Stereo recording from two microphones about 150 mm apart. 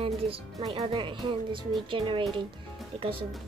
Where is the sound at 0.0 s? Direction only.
40° right (ahead or behind).